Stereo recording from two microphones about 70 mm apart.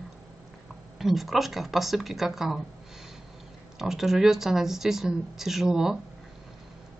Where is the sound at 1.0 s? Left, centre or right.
Centre.